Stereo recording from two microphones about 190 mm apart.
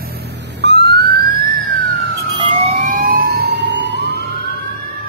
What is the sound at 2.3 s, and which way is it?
Emergency vehicle, 30° right (ahead or behind).